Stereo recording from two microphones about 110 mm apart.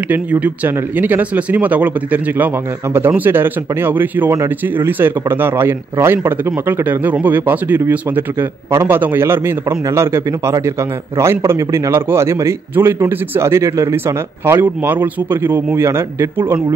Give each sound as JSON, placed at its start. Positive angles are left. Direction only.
{"t": 0.1, "sound": "speech", "side_deg": -15}